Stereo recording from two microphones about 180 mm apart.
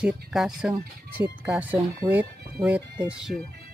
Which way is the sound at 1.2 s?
10° right (ahead or behind).